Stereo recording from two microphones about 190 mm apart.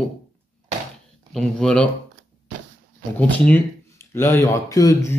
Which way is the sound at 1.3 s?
5° left (ahead or behind).